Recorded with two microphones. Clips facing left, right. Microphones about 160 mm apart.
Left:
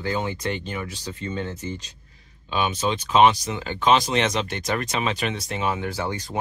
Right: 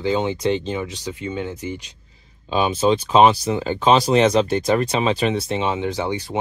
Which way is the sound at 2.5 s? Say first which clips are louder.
Right 6 dB; 30° right (ahead or behind).